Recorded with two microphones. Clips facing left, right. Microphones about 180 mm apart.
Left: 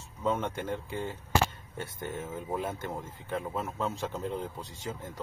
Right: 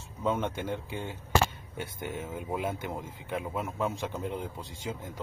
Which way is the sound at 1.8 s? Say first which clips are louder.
Even; 15° right (ahead or behind).